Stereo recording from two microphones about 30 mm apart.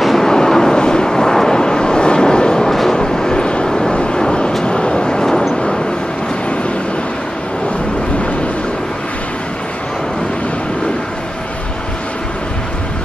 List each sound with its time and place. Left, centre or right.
0.2 s vehicle: centre
3.3 s vehicle: left
3.6 s vehicle: centre
3.9 s vehicle: left